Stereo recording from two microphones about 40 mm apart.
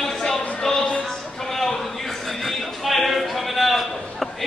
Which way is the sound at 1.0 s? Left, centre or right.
Centre.